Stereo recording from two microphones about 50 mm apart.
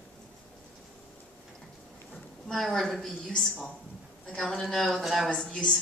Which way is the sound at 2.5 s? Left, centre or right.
Centre.